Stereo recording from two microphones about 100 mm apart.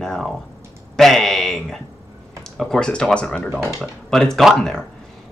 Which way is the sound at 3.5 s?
5° right (ahead or behind).